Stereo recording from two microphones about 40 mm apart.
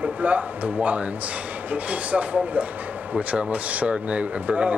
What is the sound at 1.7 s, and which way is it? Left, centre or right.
Speech, right.